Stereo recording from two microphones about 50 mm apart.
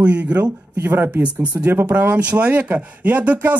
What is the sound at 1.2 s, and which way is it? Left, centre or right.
A man's voice, right.